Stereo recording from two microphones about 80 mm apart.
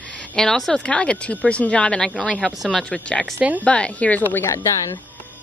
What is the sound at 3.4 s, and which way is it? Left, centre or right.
Speech, centre.